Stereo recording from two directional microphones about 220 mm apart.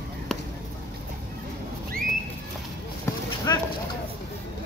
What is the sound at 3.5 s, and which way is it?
Speech, 15° left (ahead or behind).